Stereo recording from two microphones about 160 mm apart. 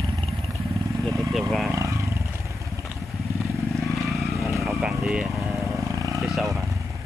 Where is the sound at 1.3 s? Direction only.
Centre (ahead or behind).